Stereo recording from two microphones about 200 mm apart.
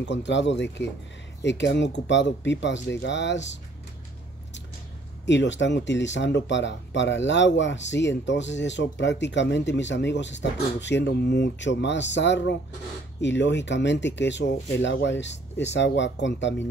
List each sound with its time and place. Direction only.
0.0 s speech: 65° left (ahead or behind)
5.2 s speech: 65° left (ahead or behind)